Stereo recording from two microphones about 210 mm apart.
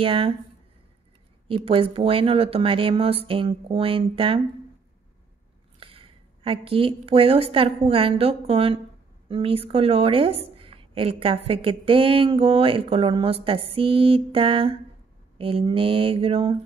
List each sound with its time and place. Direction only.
0.0 s a woman's voice: 25° right (ahead or behind)
1.5 s a woman's voice: 25° right (ahead or behind)
5.8 s a woman's voice: 25° right (ahead or behind)